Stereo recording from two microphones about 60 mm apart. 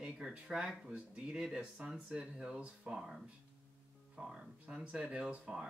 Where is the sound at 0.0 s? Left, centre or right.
Centre.